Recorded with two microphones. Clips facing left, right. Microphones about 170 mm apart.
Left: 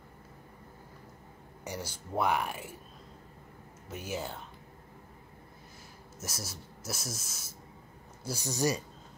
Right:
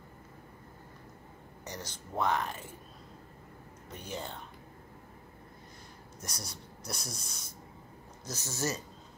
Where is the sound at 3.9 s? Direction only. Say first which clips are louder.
Left 3 dB; 5° left (ahead or behind).